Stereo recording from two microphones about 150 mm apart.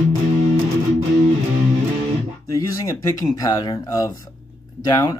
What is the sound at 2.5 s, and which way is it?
Speech, 25° left (ahead or behind).